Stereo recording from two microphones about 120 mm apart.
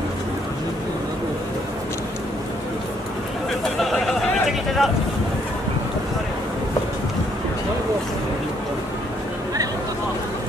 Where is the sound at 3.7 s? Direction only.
Centre (ahead or behind).